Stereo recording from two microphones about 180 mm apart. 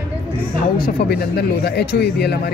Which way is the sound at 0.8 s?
60° left (ahead or behind).